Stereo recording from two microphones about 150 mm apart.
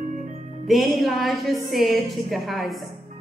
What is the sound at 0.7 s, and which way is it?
A woman's voice, centre (ahead or behind).